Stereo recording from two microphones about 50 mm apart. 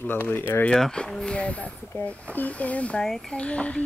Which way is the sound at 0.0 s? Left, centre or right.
Left.